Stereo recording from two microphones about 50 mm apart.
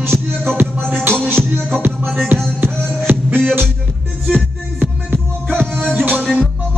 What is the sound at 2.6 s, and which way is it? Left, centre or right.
Music, right.